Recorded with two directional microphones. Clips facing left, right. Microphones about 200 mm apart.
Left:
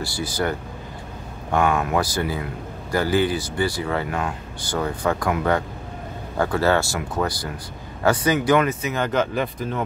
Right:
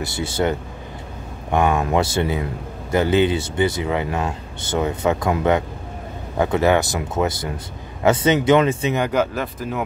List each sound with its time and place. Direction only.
0.0 s speech: 25° right (ahead or behind)
8.9 s speech: 10° right (ahead or behind)